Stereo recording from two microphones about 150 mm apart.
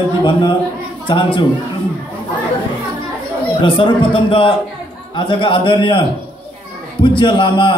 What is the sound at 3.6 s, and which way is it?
A man's voice, 35° left (ahead or behind).